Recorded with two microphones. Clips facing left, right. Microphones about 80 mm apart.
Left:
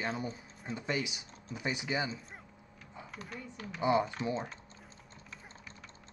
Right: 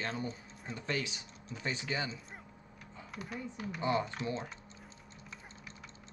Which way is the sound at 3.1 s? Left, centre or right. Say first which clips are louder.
Right 3 dB; centre.